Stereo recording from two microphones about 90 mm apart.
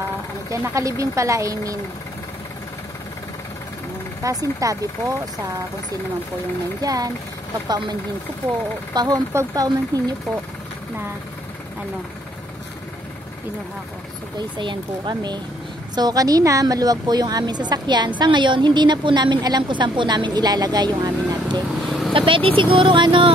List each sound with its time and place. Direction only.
0.5 s speech: 35° right (ahead or behind)
4.2 s speech: 40° right (ahead or behind)
6.8 s a woman's voice: 45° right (ahead or behind)
14.6 s a woman's voice: 60° right (ahead or behind)
21.8 s vehicle: centre (ahead or behind)
22.1 s speech: 75° right (ahead or behind)